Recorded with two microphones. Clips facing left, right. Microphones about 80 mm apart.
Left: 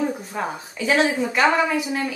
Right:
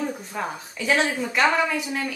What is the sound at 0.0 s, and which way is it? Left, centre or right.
A woman's voice, centre.